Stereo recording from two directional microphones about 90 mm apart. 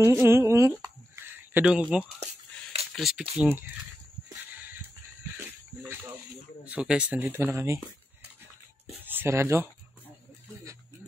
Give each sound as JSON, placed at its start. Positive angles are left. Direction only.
{"t": 0.0, "sound": "a sound", "side_deg": -30}
{"t": 1.7, "sound": "speech", "side_deg": -10}
{"t": 3.4, "sound": "speech", "side_deg": -20}
{"t": 4.5, "sound": "dog", "side_deg": -20}
{"t": 6.6, "sound": "speech", "side_deg": -10}
{"t": 7.5, "sound": "speech", "side_deg": -30}
{"t": 9.0, "sound": "speech", "side_deg": -25}